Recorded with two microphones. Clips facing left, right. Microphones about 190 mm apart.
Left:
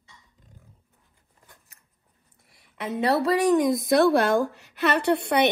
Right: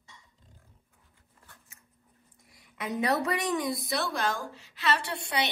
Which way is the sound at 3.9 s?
55° left (ahead or behind).